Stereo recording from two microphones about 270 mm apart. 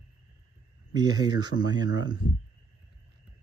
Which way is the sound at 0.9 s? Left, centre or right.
Centre.